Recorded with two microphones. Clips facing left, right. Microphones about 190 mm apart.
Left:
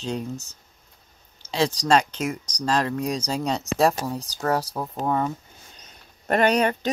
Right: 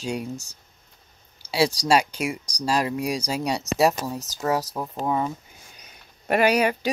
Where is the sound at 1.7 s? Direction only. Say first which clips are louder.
Even; 10° right (ahead or behind).